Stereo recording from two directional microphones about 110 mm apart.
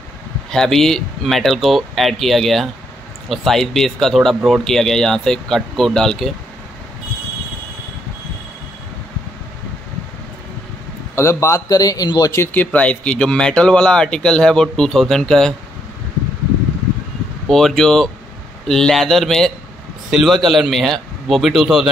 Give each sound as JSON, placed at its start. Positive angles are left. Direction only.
{"t": 0.5, "sound": "speech", "side_deg": 5}
{"t": 11.1, "sound": "a man's voice", "side_deg": 25}
{"t": 12.7, "sound": "speech", "side_deg": 10}
{"t": 17.5, "sound": "speech", "side_deg": 5}